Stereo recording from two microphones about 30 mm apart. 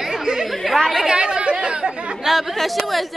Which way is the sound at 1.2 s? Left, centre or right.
Right.